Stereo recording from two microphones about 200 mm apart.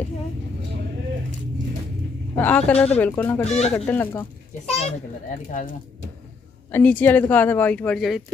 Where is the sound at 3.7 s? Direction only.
10° left (ahead or behind).